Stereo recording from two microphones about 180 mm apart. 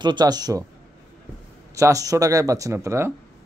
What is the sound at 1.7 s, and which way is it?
Speech, 15° right (ahead or behind).